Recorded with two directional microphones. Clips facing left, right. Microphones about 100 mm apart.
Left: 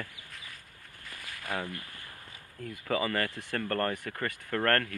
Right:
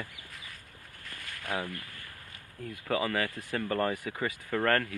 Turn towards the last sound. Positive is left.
turn(degrees=0)  # may be behind; listen again after turning